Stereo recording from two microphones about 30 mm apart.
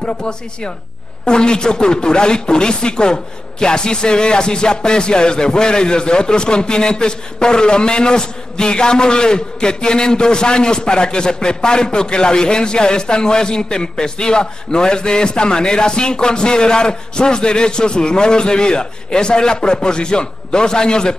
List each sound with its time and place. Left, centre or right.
0.0 s speech: left